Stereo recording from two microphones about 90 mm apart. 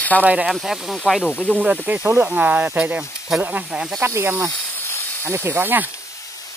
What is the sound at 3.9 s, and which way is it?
Speech, 25° right (ahead or behind).